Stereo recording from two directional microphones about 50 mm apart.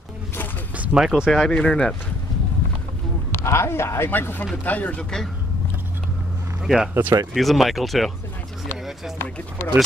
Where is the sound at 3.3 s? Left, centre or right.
Left.